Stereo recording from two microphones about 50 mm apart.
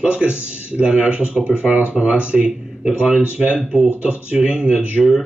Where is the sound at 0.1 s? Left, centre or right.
Right.